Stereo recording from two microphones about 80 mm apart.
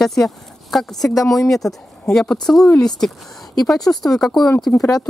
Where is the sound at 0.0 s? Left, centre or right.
Centre.